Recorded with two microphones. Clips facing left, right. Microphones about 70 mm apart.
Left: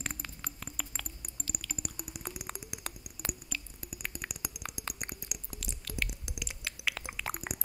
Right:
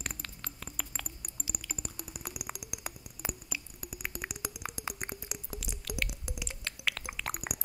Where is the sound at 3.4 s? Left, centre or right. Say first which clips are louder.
Even; centre.